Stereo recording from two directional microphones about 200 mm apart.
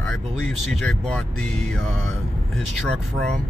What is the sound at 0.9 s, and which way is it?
Speech, centre (ahead or behind).